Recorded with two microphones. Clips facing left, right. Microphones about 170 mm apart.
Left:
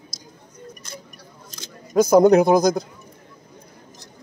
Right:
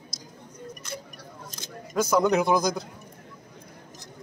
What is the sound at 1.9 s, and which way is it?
Speech, 40° left (ahead or behind).